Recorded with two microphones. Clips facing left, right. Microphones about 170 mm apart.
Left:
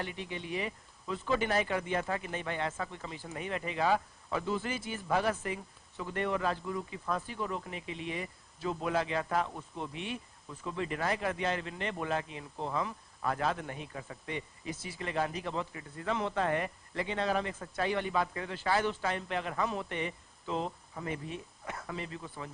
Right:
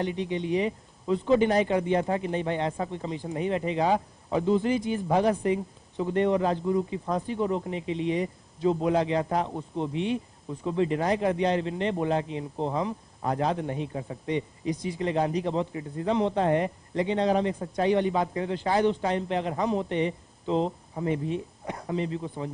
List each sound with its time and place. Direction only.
0.0 s speech: 20° right (ahead or behind)